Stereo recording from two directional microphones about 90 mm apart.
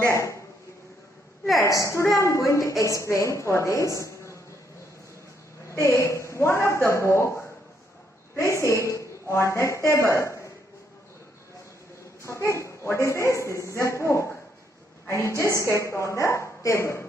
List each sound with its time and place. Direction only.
0.1 s a woman's voice: 30° left (ahead or behind)
1.6 s a woman's voice: 35° left (ahead or behind)
5.7 s a woman's voice: 30° left (ahead or behind)
8.4 s a woman's voice: 35° left (ahead or behind)
12.2 s a woman's voice: 30° left (ahead or behind)